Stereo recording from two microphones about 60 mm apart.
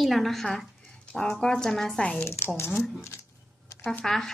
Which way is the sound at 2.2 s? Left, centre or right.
Left.